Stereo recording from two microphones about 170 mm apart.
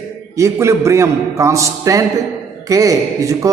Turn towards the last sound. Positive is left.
turn(degrees=-20)  # may be behind; listen again after turning